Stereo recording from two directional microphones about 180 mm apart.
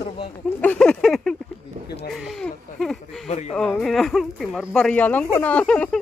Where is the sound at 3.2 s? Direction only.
40° left (ahead or behind).